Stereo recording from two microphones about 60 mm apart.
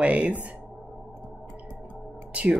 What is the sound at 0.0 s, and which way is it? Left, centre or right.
Speech, right.